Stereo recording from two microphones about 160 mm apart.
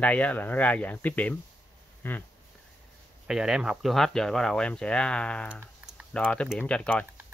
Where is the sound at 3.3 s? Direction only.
5° right (ahead or behind).